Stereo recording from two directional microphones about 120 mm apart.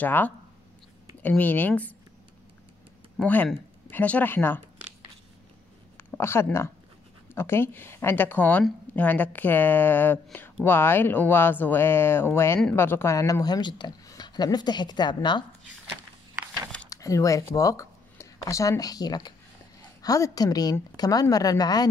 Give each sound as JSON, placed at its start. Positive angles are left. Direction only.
{"t": 0.0, "sound": "speech", "side_deg": 15}
{"t": 3.2, "sound": "speech", "side_deg": 15}
{"t": 6.1, "sound": "speech", "side_deg": 20}
{"t": 16.9, "sound": "speech", "side_deg": 25}